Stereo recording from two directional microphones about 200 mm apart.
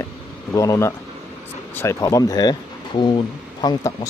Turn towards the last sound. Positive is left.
turn(degrees=20)  # may be behind; listen again after turning